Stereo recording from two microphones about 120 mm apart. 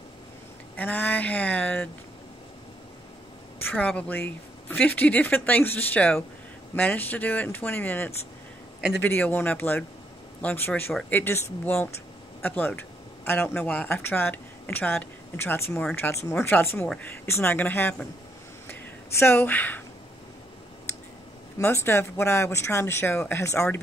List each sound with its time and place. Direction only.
0.7 s speech: 15° left (ahead or behind)
3.7 s speech: 10° left (ahead or behind)
15.8 s speech: 10° left (ahead or behind)
16.1 s speech: 20° left (ahead or behind)
21.5 s speech: 20° left (ahead or behind)